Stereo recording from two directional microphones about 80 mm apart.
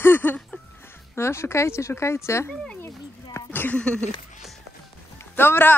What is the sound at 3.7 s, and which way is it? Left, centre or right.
Speech, centre.